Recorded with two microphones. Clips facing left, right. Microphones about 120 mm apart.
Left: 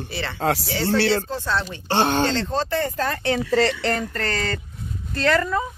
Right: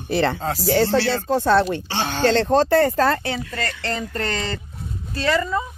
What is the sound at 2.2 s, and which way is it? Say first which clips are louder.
Speech: right 6 dB; 55° right (ahead or behind).